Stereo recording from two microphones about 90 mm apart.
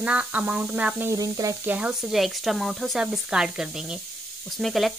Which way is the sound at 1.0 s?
40° right (ahead or behind).